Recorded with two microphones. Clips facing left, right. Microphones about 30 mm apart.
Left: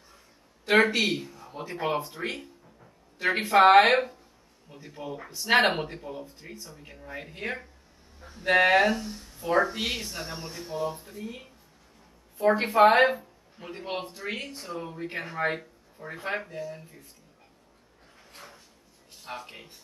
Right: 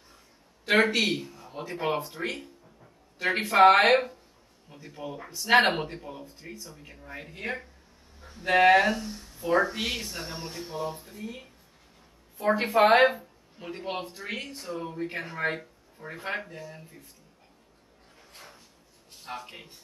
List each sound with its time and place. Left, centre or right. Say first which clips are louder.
0.7 s speech: left 1 dB; centre
2.2 s a sound: even; centre
3.7 s speech: left 2 dB; centre
12.7 s speech: even; centre
13.1 s speech: left 4 dB; centre
14.2 s speech: left 1 dB; centre
18.1 s a sound: left 1 dB; centre
19.2 s speech: even; centre